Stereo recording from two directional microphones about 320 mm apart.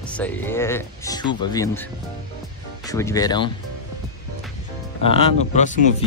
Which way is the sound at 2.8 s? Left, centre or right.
Centre.